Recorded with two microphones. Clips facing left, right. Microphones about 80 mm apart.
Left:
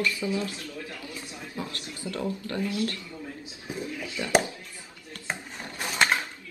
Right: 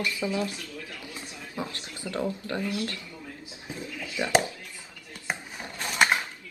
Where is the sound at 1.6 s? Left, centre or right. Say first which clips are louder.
Right 1 dB; right.